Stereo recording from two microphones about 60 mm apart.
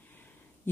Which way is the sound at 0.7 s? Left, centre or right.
Left.